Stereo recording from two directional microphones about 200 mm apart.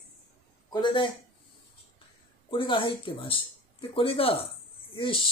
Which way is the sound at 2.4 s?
25° left (ahead or behind).